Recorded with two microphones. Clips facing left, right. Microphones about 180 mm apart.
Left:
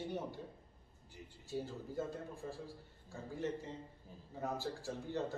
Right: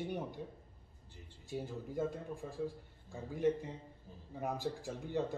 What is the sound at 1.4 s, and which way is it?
Speech, 15° right (ahead or behind).